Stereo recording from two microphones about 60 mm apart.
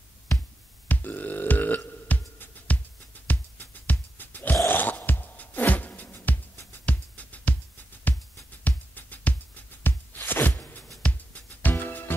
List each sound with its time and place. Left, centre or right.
0.8 s burping: left
1.9 s music: left
6.5 s music: left
6.9 s music: left
8.6 s music: left